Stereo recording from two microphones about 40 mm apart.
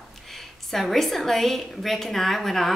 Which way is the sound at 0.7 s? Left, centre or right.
Centre.